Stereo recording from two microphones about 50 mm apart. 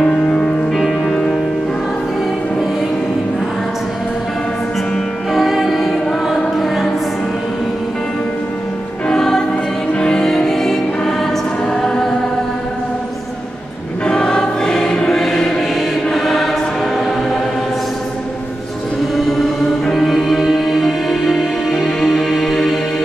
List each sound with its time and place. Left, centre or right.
0.0 s music: centre
0.7 s music: centre
5.3 s music: centre
9.0 s music: centre
14.0 s choir: centre
19.9 s music: centre